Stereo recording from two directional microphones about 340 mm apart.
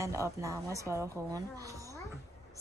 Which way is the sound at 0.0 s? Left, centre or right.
Centre.